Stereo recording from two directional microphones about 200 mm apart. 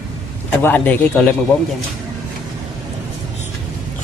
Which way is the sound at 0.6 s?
10° left (ahead or behind).